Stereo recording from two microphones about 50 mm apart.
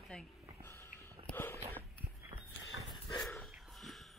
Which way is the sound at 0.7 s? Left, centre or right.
Left.